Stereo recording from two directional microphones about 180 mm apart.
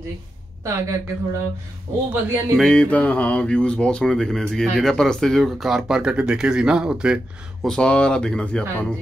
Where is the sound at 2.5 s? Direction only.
5° left (ahead or behind).